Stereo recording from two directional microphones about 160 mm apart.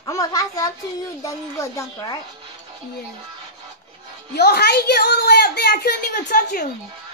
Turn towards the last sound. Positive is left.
turn(degrees=60)  # may be behind; listen again after turning